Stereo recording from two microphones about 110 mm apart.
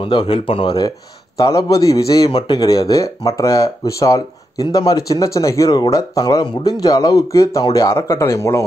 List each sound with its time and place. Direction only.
0.0 s speech: 45° left (ahead or behind)
1.4 s speech: 30° left (ahead or behind)